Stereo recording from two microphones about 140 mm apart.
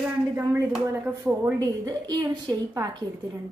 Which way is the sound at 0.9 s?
15° right (ahead or behind).